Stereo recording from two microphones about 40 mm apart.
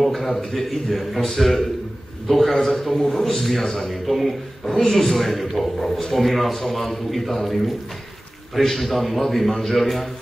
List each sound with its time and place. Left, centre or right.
0.0 s a man's voice: centre
3.9 s a man's voice: centre
4.6 s a man's voice: centre